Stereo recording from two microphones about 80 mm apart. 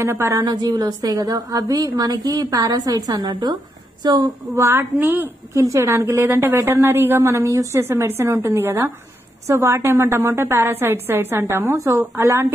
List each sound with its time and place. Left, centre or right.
0.0 s a woman's voice: right
0.5 s a woman's voice: right
3.3 s a woman's voice: right
4.0 s a woman's voice: right
4.6 s a woman's voice: right
5.0 s a woman's voice: right
5.5 s a woman's voice: right
9.5 s a woman's voice: right